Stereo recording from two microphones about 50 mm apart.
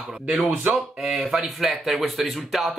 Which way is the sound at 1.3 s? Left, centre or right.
Centre.